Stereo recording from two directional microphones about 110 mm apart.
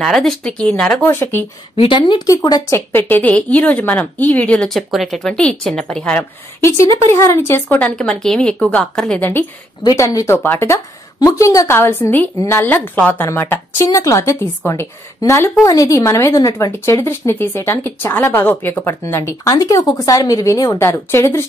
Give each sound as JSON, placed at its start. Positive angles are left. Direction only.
{"t": 0.0, "sound": "speech", "side_deg": 0}
{"t": 1.8, "sound": "a woman's voice", "side_deg": 45}
{"t": 2.7, "sound": "speech", "side_deg": 20}
{"t": 4.6, "sound": "a woman's voice", "side_deg": 0}
{"t": 7.1, "sound": "speech", "side_deg": 25}
{"t": 9.8, "sound": "speech", "side_deg": 30}